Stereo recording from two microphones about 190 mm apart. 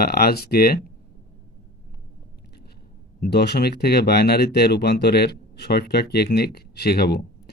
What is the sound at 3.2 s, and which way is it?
Speech, 60° left (ahead or behind).